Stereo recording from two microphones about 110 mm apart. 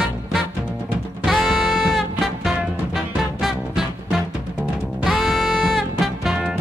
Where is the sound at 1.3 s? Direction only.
Centre (ahead or behind).